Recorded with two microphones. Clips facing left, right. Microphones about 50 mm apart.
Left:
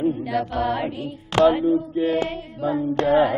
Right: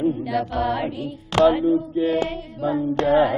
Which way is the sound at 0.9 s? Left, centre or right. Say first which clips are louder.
Even; left.